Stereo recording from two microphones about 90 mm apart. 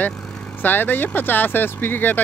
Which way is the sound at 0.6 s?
20° left (ahead or behind).